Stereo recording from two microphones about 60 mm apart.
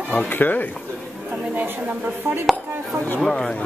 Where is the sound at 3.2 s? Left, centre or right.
Centre.